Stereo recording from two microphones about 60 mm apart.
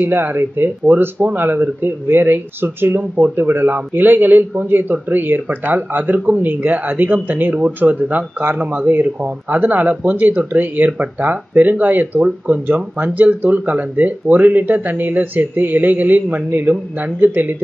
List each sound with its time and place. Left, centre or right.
0.0 s speech: right